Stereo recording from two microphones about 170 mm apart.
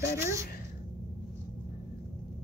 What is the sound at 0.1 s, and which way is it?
Speech, 15° right (ahead or behind).